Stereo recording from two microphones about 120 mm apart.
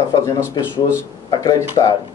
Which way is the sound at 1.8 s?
45° left (ahead or behind).